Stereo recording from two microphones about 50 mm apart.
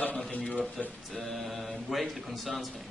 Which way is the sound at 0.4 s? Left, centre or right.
Centre.